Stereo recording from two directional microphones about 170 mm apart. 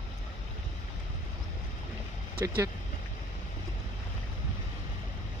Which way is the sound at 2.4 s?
15° right (ahead or behind).